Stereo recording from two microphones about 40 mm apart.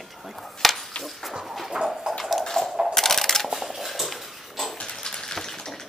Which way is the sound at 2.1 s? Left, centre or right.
Centre.